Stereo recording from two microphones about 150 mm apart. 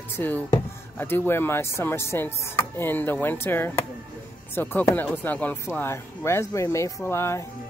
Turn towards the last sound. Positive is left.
turn(degrees=15)  # may be behind; listen again after turning